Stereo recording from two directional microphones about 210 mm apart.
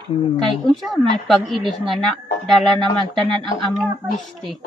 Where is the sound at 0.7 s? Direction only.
Centre (ahead or behind).